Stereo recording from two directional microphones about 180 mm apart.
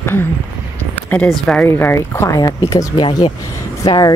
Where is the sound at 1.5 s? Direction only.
10° left (ahead or behind).